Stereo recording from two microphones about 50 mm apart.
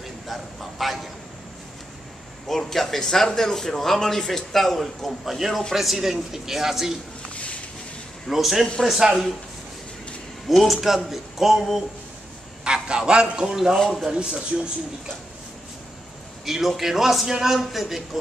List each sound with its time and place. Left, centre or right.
0.0 s a sound: centre
2.4 s speech: centre
7.3 s a sound: left
8.3 s speech: centre
10.7 s speech: centre
12.6 s a man's voice: centre
13.7 s speech: centre
14.1 s speech: centre
16.4 s speech: centre